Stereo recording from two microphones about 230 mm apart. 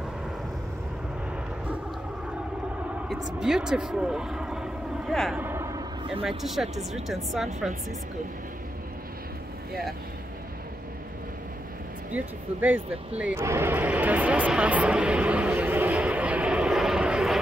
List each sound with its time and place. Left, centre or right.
3.3 s vehicle: centre
6.2 s speech: centre
12.1 s speech: centre